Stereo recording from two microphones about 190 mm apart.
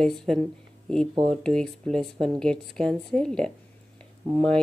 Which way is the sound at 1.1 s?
25° right (ahead or behind).